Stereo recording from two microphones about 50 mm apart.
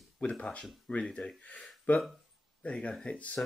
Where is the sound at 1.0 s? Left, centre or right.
Centre.